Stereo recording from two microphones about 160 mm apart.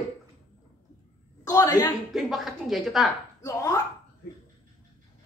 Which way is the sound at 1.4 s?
20° left (ahead or behind).